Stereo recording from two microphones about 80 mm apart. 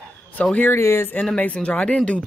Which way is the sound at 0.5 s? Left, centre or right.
Left.